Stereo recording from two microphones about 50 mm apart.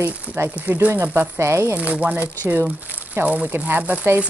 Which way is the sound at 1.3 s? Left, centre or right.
Right.